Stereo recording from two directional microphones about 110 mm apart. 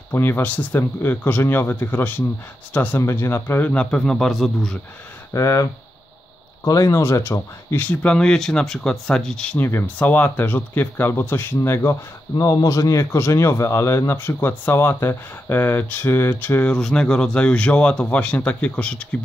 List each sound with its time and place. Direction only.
0.1 s speech: 20° left (ahead or behind); by 4.7 s centre (ahead or behind)
5.3 s speech: 30° left (ahead or behind); by 9.6 s 5° left (ahead or behind)
9.6 s speech: 20° left (ahead or behind)
16.7 s speech: 5° left (ahead or behind)